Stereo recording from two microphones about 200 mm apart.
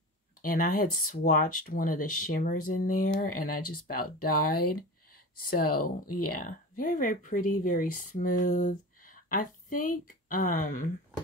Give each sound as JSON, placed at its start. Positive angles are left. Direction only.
{"t": 0.4, "sound": "speech", "side_deg": 45}
{"t": 5.5, "sound": "speech", "side_deg": 45}